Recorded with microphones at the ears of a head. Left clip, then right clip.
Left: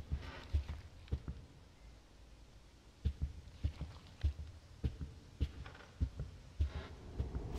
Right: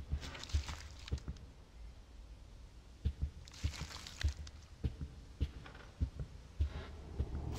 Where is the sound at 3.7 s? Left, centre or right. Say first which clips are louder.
Right 9 dB; right.